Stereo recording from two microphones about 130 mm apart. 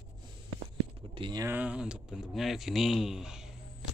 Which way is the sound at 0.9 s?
45° right (ahead or behind).